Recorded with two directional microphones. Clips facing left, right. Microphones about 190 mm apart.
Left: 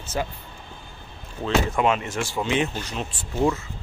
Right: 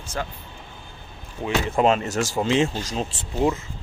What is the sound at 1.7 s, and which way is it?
Speech, 35° right (ahead or behind).